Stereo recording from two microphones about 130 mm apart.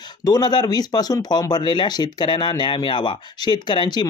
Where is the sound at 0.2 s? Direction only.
30° left (ahead or behind).